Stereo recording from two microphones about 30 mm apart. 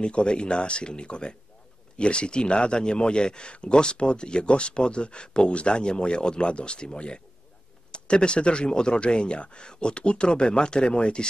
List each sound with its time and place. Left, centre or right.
0.0 s speech: left